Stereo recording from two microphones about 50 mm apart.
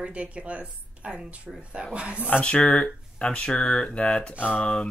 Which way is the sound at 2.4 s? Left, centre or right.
Left.